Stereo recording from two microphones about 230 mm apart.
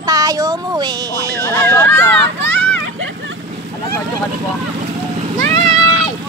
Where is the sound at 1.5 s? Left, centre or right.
Centre.